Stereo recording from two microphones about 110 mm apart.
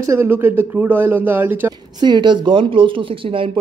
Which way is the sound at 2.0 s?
45° right (ahead or behind).